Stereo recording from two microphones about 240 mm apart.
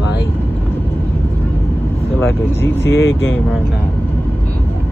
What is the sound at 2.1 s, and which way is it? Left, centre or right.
Speech, centre.